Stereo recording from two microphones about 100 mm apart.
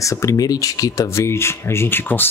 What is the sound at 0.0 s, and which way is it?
Speech, 30° left (ahead or behind).